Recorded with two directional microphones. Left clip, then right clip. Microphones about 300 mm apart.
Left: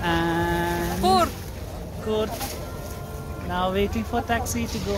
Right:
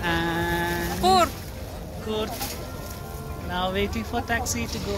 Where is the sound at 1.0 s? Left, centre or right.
Centre.